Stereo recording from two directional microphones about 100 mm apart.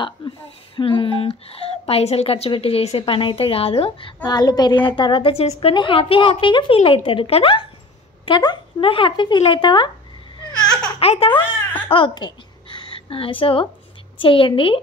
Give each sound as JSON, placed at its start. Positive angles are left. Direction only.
{"t": 0.2, "sound": "a woman's voice", "side_deg": 60}
{"t": 4.2, "sound": "a woman's voice", "side_deg": 40}
{"t": 8.3, "sound": "speech", "side_deg": 50}
{"t": 10.5, "sound": "a sound", "side_deg": 10}
{"t": 11.0, "sound": "speech", "side_deg": 85}
{"t": 11.9, "sound": "a sound", "side_deg": 55}
{"t": 13.1, "sound": "a woman's voice", "side_deg": 65}